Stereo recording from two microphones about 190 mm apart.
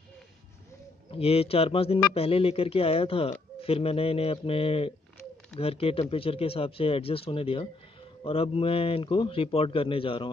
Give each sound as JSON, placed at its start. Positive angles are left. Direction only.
{"t": 1.1, "sound": "a man's voice", "side_deg": 30}